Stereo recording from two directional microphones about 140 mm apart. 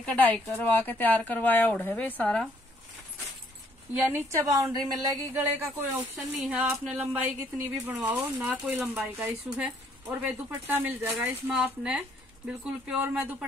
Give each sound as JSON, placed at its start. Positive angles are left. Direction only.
{"t": 0.0, "sound": "speech", "side_deg": 10}
{"t": 3.9, "sound": "a woman's voice", "side_deg": -15}
{"t": 5.3, "sound": "speech", "side_deg": -15}